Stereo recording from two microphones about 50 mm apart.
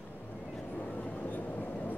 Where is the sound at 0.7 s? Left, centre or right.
Left.